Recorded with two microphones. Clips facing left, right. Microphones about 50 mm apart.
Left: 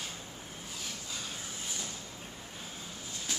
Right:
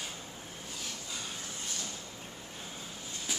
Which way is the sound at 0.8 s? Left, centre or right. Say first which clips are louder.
Even; centre.